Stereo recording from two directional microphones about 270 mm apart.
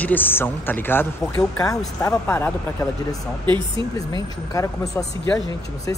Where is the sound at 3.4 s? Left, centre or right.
Centre.